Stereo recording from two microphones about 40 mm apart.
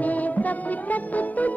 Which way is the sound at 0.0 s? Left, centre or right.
Left.